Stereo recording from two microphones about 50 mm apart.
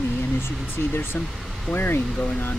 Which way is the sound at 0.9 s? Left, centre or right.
Left.